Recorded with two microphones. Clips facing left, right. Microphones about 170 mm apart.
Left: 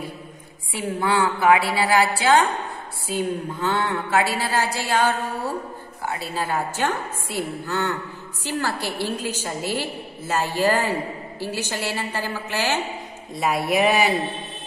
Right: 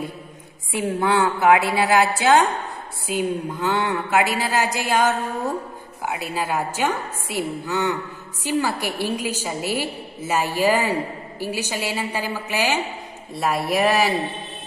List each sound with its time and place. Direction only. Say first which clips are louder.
0.7 s a woman's voice: right 2 dB; 20° right (ahead or behind)
13.3 s speech: even; centre (ahead or behind)